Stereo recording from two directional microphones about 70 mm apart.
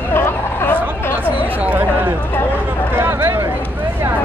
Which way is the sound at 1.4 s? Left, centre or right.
Right.